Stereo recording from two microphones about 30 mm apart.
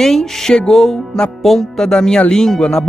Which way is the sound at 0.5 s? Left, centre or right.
Left.